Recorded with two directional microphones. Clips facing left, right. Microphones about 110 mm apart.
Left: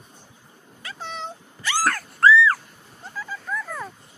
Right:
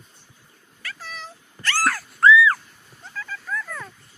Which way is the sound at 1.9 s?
Centre (ahead or behind).